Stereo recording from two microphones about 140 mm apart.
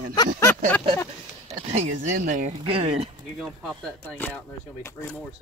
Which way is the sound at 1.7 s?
60° right (ahead or behind).